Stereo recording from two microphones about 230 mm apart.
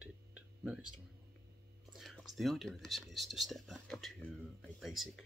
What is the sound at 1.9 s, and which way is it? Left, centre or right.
Speech, centre.